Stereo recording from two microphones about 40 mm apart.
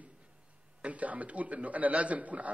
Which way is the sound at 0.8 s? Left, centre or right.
Right.